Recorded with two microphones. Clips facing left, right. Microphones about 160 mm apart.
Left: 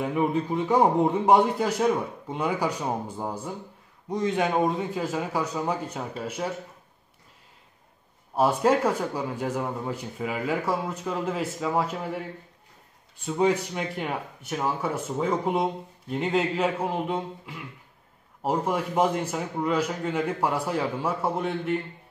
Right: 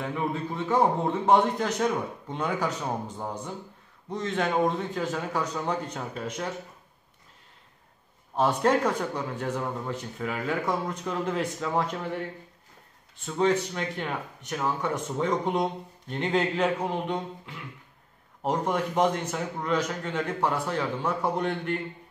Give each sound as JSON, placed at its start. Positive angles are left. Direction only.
{"t": 0.0, "sound": "speech", "side_deg": 15}
{"t": 8.4, "sound": "speech", "side_deg": 10}
{"t": 13.2, "sound": "speech", "side_deg": 10}